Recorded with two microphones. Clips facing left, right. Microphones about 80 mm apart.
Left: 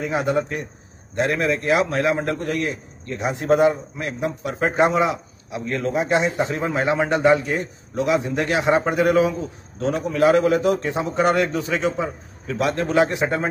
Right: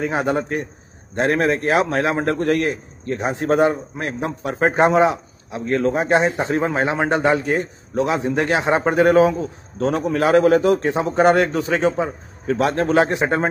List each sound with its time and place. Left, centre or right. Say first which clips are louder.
0.0 s speech: right 1 dB; right
2.4 s a man's voice: right 5 dB; right
3.2 s a man's voice: even; right
9.8 s speech: right 1 dB; right